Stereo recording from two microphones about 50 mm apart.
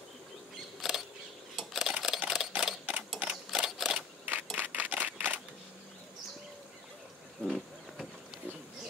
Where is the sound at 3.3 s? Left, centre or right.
Centre.